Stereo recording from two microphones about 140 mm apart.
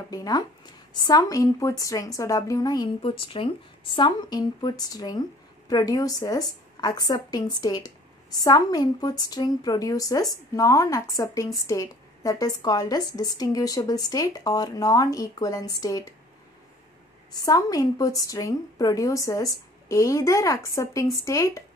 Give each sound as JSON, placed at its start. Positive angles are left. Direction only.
{"t": 0.1, "sound": "speech", "side_deg": 25}
{"t": 17.3, "sound": "speech", "side_deg": 25}